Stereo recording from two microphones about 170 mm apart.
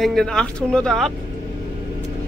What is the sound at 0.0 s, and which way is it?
Speech, 5° left (ahead or behind).